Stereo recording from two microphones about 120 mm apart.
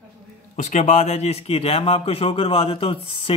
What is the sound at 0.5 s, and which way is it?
Speech, 90° left.